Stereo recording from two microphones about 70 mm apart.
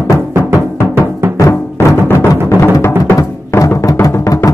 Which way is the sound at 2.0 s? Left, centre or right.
Left.